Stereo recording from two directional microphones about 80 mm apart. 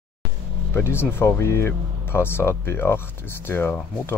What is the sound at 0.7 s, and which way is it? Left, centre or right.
Speech, left.